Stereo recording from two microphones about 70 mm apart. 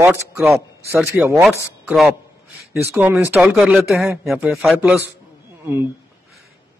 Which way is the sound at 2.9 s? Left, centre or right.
Right.